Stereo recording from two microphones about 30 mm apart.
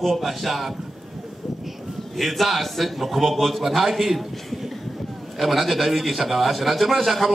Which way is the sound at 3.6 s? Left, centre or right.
Centre.